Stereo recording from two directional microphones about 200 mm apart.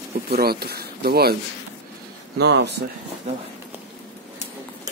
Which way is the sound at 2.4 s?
60° right (ahead or behind).